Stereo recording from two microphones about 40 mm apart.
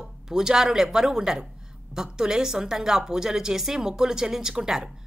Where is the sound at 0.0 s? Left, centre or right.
Centre.